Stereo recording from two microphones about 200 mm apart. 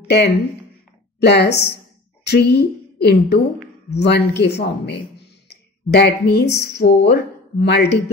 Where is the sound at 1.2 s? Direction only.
55° left (ahead or behind).